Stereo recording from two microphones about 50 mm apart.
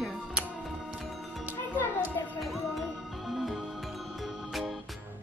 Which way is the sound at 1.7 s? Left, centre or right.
Left.